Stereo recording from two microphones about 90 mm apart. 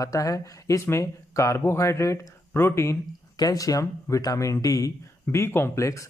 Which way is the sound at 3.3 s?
45° left (ahead or behind).